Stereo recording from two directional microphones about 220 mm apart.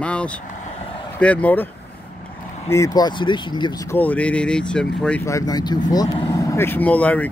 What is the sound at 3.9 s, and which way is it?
Speech, 5° left (ahead or behind).